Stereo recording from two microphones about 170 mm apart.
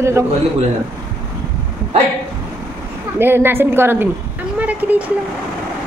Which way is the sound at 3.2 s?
10° right (ahead or behind).